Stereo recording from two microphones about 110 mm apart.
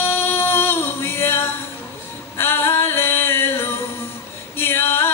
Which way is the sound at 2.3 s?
20° left (ahead or behind).